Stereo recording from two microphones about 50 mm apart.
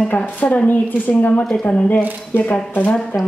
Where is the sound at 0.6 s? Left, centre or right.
Left.